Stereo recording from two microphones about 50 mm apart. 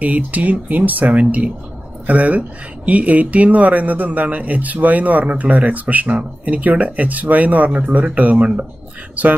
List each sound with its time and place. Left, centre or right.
0.0 s speech: right